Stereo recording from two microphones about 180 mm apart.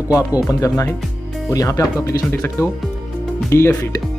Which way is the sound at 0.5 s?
20° left (ahead or behind).